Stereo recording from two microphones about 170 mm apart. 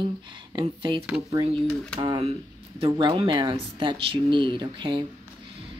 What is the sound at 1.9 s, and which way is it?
Speech, 30° right (ahead or behind).